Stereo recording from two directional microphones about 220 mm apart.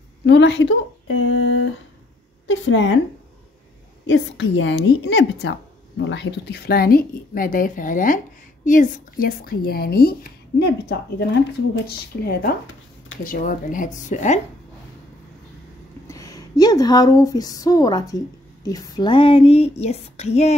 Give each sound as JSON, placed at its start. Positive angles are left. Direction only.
{"t": 0.3, "sound": "speech", "side_deg": 50}
{"t": 2.4, "sound": "a sound", "side_deg": 55}
{"t": 4.1, "sound": "speech", "side_deg": 55}
{"t": 16.1, "sound": "speech", "side_deg": 15}